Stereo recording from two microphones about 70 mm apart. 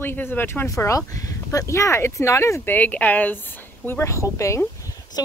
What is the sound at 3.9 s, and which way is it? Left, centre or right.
Speech, left.